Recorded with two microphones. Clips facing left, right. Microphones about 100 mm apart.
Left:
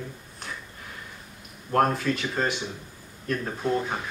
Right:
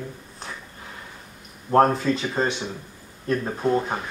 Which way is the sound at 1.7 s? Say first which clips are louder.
Right 5 dB; 25° right (ahead or behind).